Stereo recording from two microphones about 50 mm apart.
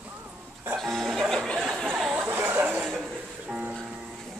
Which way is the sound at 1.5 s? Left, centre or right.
Centre.